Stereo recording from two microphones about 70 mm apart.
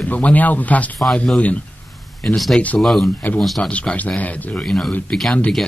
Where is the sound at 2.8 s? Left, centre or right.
Centre.